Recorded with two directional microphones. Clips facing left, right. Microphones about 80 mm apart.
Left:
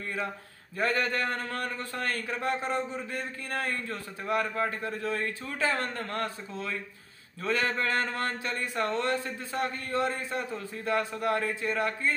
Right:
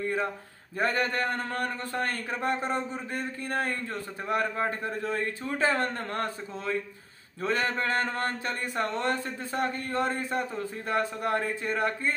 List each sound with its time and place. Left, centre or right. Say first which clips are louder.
0.7 s a man's voice: right 1 dB; right